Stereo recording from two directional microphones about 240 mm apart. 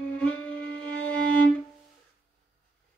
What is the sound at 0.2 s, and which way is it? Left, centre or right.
Music, centre.